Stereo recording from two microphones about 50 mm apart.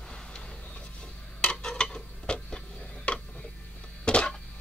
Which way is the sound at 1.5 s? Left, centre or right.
Centre.